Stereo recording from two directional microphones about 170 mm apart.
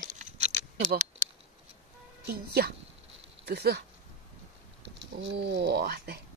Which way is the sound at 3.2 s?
75° right (ahead or behind).